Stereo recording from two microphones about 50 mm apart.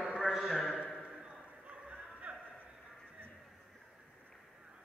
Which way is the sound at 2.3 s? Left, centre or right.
Right.